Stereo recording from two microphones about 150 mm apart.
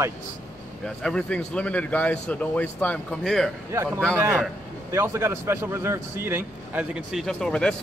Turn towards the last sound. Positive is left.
turn(degrees=5)  # may be behind; listen again after turning